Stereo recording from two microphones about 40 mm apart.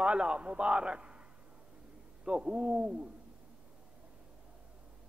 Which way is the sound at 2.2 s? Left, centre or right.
Right.